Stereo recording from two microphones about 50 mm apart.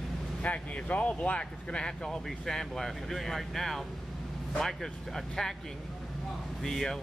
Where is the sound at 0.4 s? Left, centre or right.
Left; by 5.5 s centre.